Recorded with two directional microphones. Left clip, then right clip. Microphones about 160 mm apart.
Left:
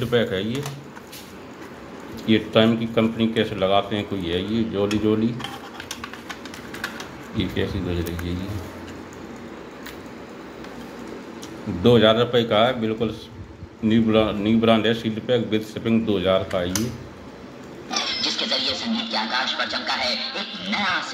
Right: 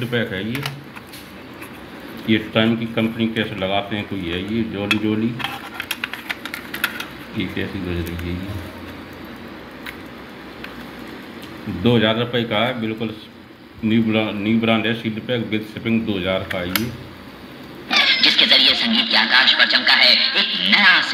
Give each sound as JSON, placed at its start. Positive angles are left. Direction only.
{"t": 0.0, "sound": "a man's voice", "side_deg": 15}
{"t": 2.2, "sound": "a man's voice", "side_deg": 10}
{"t": 11.8, "sound": "a man's voice", "side_deg": 10}
{"t": 17.8, "sound": "a sound", "side_deg": -10}